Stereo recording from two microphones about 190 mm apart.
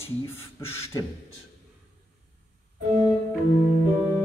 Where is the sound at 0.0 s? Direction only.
15° left (ahead or behind).